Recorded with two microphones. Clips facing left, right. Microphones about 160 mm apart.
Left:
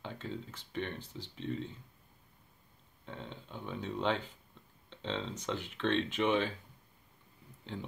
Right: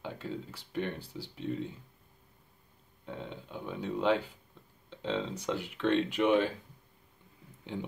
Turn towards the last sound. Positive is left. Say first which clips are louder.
# right 4 dB
turn(degrees=-15)  # may be behind; listen again after turning